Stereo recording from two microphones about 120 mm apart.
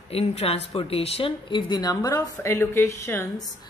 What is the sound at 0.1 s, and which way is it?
A woman's voice, 55° left (ahead or behind).